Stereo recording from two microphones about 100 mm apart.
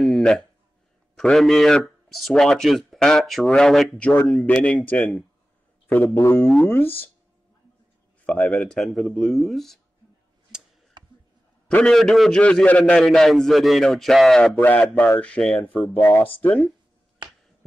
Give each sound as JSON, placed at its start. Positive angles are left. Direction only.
{"t": 0.0, "sound": "a sound", "side_deg": 5}
{"t": 1.1, "sound": "speech", "side_deg": 5}
{"t": 4.5, "sound": "a man's voice", "side_deg": 20}
{"t": 8.3, "sound": "speech", "side_deg": 15}
{"t": 11.0, "sound": "a sound", "side_deg": -45}
{"t": 11.6, "sound": "a man's voice", "side_deg": 5}
{"t": 13.0, "sound": "speech", "side_deg": 0}
{"t": 14.6, "sound": "a man's voice", "side_deg": 15}